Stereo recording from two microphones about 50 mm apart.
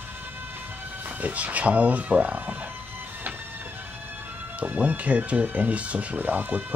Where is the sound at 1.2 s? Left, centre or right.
Right.